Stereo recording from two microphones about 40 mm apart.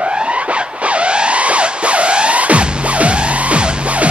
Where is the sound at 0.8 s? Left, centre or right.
Right.